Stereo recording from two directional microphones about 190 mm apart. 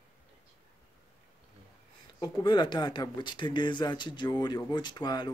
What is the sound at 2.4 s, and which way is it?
Speech, 25° left (ahead or behind).